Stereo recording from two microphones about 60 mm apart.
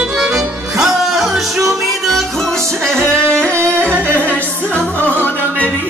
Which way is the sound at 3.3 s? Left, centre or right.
Right.